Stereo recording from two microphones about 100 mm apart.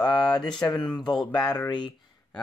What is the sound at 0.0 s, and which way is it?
Speech, 45° left (ahead or behind).